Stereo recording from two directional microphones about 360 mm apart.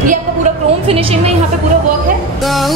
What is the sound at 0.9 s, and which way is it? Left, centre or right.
Speech, centre.